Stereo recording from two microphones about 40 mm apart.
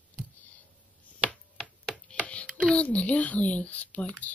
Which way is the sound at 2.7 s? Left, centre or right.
Left.